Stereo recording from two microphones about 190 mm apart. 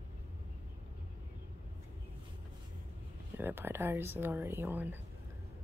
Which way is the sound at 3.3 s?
10° right (ahead or behind).